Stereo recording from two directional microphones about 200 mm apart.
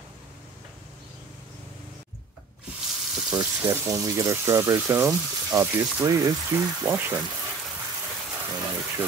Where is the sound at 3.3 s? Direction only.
15° right (ahead or behind).